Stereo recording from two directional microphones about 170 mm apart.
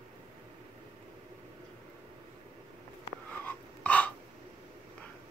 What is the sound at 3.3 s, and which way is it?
Wheeze, 10° left (ahead or behind).